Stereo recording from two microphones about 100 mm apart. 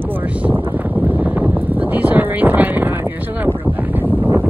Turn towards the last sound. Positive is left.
turn(degrees=-20)  # may be behind; listen again after turning